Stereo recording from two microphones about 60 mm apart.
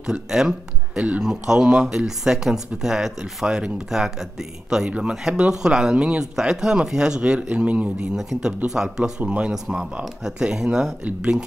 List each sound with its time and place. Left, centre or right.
0.0 s speech: centre
8.2 s speech: centre